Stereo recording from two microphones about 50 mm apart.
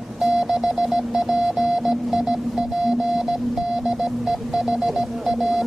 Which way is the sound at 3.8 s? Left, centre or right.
Centre.